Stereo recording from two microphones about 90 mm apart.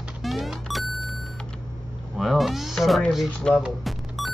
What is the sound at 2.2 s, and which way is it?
Speech, centre (ahead or behind).